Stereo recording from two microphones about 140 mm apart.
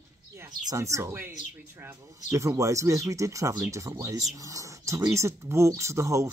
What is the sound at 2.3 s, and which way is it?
Speech, 20° right (ahead or behind).